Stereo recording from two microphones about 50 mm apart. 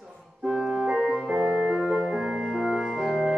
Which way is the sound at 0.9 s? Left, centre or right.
Centre.